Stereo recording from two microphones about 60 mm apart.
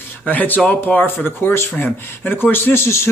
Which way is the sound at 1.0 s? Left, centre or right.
Left.